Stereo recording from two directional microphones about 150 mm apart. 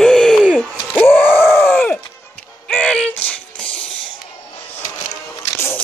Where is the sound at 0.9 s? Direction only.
10° left (ahead or behind).